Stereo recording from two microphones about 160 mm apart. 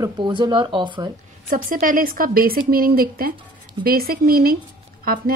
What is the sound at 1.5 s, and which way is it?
A woman's voice, 55° right (ahead or behind).